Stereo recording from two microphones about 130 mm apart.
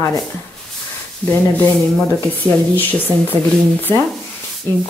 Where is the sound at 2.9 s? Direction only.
15° left (ahead or behind).